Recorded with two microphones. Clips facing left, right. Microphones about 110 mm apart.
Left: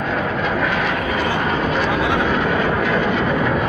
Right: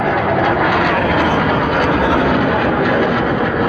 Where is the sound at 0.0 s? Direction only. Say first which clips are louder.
Right 7 dB; 85° right.